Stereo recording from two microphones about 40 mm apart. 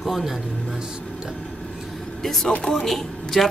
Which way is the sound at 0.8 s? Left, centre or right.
Right.